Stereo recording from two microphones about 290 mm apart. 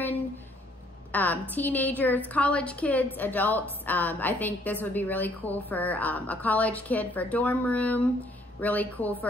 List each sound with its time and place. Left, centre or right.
1.1 s a woman's voice: centre